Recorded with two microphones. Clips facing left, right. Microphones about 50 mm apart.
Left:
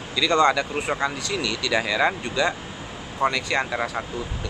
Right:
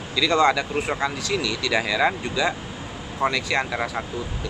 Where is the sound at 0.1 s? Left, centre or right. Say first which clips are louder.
Even; centre.